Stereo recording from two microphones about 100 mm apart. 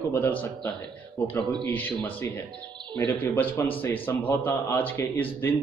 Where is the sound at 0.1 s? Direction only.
20° left (ahead or behind).